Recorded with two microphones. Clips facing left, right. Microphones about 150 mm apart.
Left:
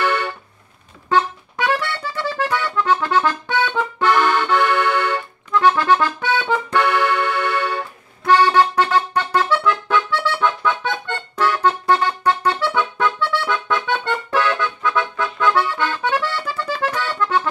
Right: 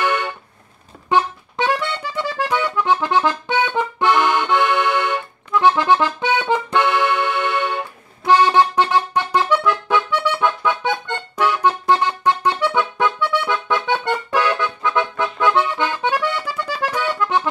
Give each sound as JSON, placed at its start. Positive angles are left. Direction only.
{"t": 0.0, "sound": "music", "side_deg": -15}
{"t": 1.0, "sound": "accordion", "side_deg": -15}
{"t": 8.3, "sound": "music", "side_deg": -15}